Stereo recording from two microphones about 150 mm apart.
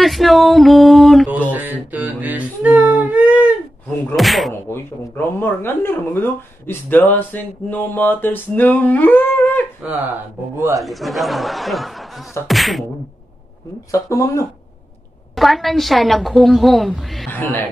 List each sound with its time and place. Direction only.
0.0 s speech: centre (ahead or behind)
1.3 s a sound: 10° right (ahead or behind)
4.6 s speech: 15° left (ahead or behind)
10.8 s a woman's voice: centre (ahead or behind)
13.9 s speech: 20° left (ahead or behind)
15.3 s a woman's voice: centre (ahead or behind)